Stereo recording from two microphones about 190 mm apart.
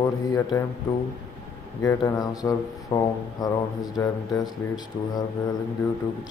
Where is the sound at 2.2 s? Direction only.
20° left (ahead or behind).